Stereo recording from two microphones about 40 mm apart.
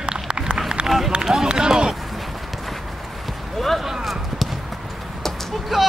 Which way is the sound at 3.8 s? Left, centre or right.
Centre.